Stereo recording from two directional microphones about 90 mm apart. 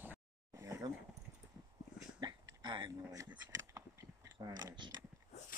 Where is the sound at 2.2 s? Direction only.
55° right (ahead or behind).